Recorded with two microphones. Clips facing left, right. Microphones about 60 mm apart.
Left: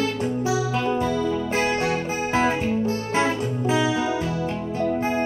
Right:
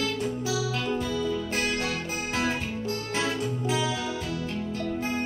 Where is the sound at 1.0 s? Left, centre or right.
Left.